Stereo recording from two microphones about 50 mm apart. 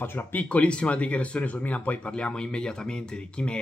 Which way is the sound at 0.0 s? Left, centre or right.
Left.